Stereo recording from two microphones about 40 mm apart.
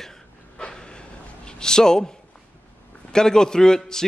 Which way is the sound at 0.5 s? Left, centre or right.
Centre.